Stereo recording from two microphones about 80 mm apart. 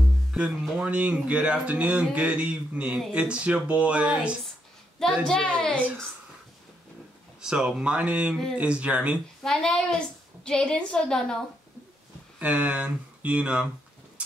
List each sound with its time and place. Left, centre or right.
0.3 s speech: centre
5.2 s a woman's voice: centre
7.4 s speech: centre
9.4 s a woman's voice: centre
12.4 s speech: centre